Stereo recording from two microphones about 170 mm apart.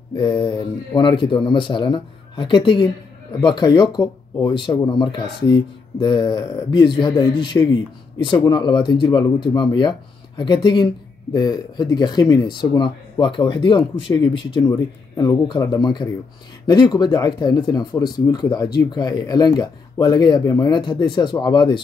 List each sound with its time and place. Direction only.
0.1 s speech: 30° left (ahead or behind)